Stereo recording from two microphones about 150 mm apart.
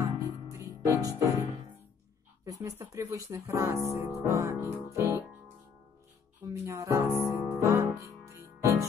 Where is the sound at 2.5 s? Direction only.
20° right (ahead or behind).